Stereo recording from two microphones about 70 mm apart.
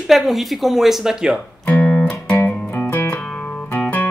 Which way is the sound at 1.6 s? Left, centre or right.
Left.